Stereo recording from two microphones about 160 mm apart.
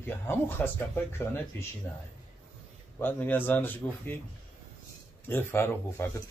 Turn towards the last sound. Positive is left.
turn(degrees=15)  # may be behind; listen again after turning